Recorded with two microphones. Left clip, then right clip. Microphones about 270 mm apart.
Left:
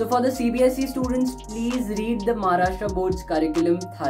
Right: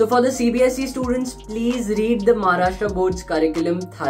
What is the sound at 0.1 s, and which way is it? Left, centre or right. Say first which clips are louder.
Speech: right 4 dB; centre.